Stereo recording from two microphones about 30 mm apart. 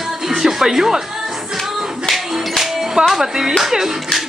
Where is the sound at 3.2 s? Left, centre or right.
Centre.